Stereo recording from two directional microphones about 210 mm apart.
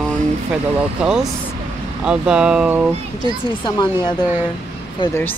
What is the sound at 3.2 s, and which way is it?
Speech, 20° left (ahead or behind).